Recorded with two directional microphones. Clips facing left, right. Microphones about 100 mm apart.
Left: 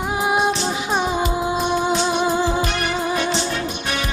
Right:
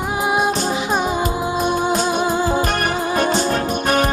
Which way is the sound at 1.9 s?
45° right (ahead or behind).